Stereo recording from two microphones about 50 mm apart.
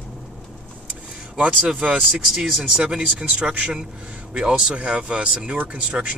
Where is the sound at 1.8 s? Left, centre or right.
Right.